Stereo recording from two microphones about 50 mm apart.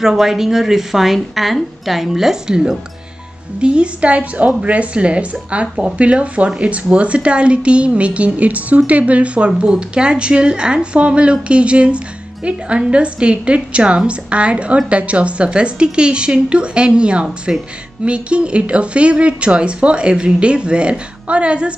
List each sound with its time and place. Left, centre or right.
0.0 s a woman's voice: centre